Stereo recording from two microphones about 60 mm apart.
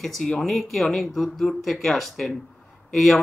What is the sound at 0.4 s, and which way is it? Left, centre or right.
A man's voice, centre.